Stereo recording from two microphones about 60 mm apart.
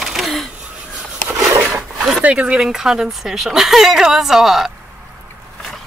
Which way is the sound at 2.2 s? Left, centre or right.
Right.